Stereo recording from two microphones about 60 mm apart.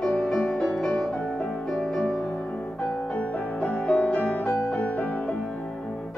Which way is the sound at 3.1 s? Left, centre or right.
Centre.